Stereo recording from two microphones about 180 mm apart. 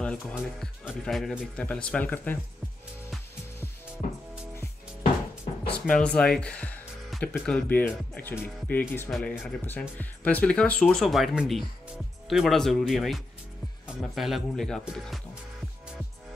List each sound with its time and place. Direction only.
0.0 s speech: 5° left (ahead or behind)
5.9 s speech: 5° left (ahead or behind)